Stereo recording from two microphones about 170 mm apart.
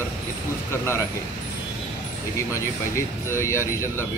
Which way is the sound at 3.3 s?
15° left (ahead or behind).